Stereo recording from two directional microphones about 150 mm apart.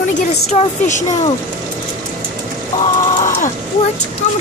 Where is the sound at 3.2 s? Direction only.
60° left (ahead or behind).